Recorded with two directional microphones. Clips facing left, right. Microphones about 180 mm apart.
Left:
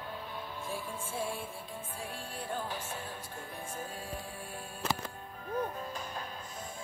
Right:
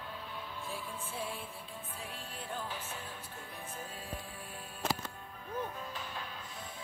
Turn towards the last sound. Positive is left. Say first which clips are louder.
# left 3 dB
turn(degrees=40)  # may be behind; listen again after turning